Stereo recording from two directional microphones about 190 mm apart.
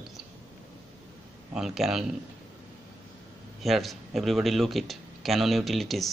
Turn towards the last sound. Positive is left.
turn(degrees=0)  # may be behind; listen again after turning